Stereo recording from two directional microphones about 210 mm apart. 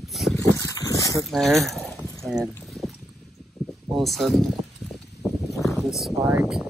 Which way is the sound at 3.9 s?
Centre (ahead or behind).